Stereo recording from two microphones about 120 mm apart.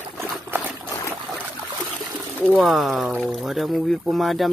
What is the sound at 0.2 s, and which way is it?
Trickle, 15° right (ahead or behind).